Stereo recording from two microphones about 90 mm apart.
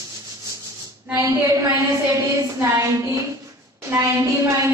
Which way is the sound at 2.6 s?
35° right (ahead or behind).